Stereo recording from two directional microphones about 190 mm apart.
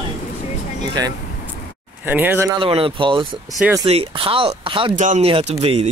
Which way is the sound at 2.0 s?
10° right (ahead or behind).